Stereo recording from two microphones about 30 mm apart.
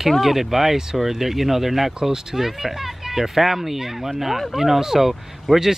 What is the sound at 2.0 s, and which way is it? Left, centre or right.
Speech, centre.